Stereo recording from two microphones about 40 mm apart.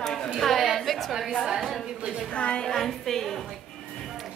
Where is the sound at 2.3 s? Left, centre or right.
Left.